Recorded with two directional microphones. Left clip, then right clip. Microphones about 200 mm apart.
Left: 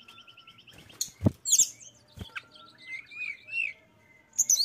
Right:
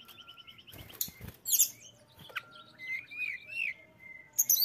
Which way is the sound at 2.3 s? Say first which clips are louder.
Right 1 dB; 10° right (ahead or behind).